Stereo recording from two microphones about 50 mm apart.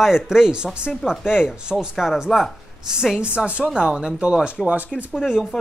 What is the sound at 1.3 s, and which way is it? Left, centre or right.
Speech, centre.